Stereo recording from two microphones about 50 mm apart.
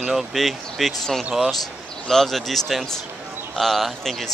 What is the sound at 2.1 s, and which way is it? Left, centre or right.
Speech, centre.